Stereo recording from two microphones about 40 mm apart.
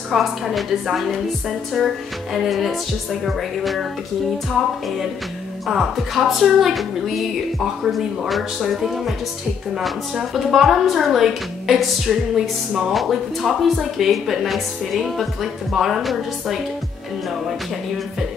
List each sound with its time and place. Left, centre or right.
0.1 s a woman's voice: centre
1.8 s music: centre
2.3 s a woman's voice: centre
8.3 s a woman's voice: centre
10.1 s a woman's voice: centre